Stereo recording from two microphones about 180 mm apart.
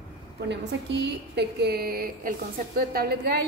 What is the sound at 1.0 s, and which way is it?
A woman's voice, 65° right (ahead or behind).